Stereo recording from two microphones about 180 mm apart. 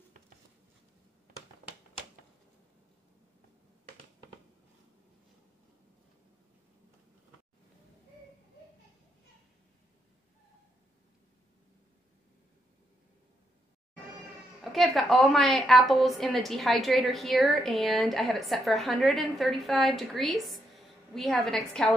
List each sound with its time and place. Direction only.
14.6 s a woman's voice: centre (ahead or behind)